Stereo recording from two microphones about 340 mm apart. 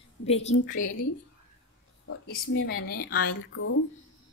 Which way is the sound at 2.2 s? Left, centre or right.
Left.